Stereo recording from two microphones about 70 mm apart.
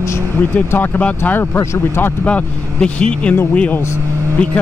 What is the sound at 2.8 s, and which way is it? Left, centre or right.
Speech, centre.